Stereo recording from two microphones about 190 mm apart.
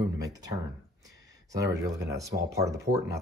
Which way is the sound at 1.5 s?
20° right (ahead or behind).